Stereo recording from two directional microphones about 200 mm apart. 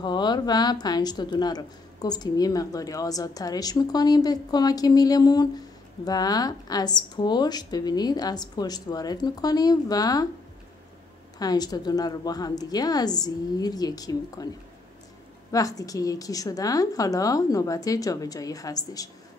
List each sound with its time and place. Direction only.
0.0 s a woman's voice: 20° left (ahead or behind)
11.3 s a woman's voice: 20° left (ahead or behind)
15.5 s a woman's voice: 15° left (ahead or behind)